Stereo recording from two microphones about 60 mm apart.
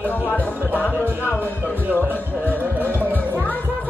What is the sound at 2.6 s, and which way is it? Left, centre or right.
Speech, right.